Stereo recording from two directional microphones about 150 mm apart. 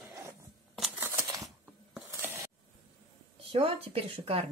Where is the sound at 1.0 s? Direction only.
20° right (ahead or behind).